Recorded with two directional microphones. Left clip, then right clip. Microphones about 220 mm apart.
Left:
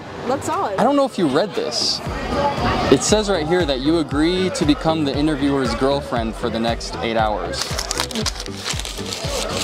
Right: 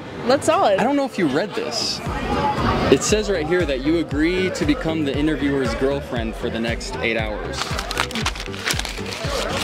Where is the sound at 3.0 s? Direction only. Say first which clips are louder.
Left 2 dB; 35° left (ahead or behind).